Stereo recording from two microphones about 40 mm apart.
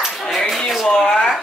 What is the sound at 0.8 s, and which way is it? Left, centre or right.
Speech, centre.